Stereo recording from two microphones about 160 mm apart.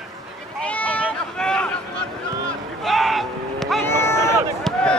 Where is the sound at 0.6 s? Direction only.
10° left (ahead or behind).